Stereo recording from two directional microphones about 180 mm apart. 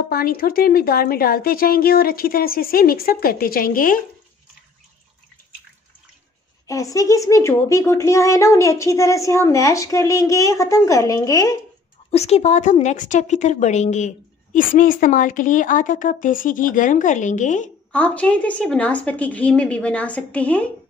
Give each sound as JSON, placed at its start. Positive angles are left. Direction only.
{"t": 0.1, "sound": "a woman's voice", "side_deg": 55}
{"t": 6.7, "sound": "a woman's voice", "side_deg": 20}
{"t": 12.1, "sound": "a woman's voice", "side_deg": 35}
{"t": 17.9, "sound": "a woman's voice", "side_deg": 5}